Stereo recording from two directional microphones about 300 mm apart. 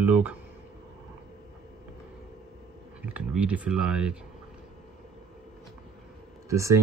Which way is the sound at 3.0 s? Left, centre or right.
Centre.